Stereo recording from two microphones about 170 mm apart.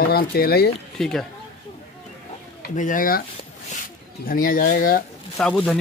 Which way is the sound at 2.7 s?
50° left (ahead or behind).